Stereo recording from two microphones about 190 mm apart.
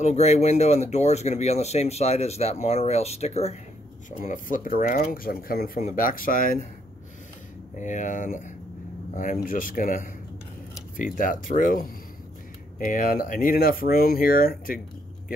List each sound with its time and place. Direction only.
0.0 s speech: 35° left (ahead or behind)
4.2 s speech: 45° left (ahead or behind)
7.7 s speech: 40° left (ahead or behind)
11.1 s speech: 45° left (ahead or behind)